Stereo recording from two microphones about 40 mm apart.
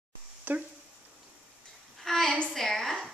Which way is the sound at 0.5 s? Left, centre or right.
Right.